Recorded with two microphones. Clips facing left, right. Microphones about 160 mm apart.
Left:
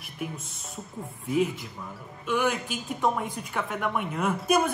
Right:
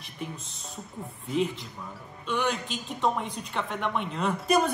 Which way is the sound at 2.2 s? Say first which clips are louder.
Left 2 dB; 5° left (ahead or behind).